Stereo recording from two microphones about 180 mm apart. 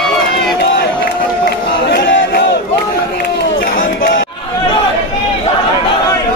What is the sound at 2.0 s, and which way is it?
Crowd, 80° left.